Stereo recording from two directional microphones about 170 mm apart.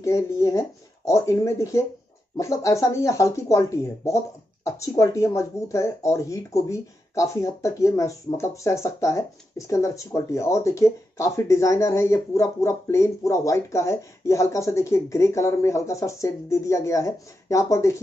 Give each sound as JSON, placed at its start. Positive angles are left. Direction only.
{"t": 0.0, "sound": "speech", "side_deg": 20}